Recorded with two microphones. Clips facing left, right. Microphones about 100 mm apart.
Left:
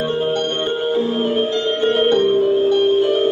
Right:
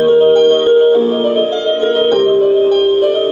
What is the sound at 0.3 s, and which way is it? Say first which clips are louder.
Music: right 12 dB; 45° right (ahead or behind).